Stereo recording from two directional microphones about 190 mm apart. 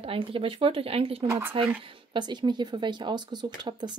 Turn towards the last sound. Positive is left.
turn(degrees=-20)  # may be behind; listen again after turning